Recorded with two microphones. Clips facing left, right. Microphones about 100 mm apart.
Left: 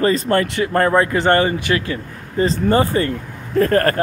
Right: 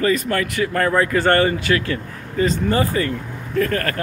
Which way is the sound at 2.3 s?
35° left (ahead or behind).